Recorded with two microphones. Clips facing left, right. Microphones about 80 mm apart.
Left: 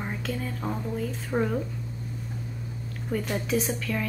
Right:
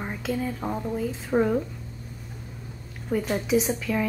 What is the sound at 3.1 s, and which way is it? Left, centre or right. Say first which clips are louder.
A woman's voice: right 4 dB; centre.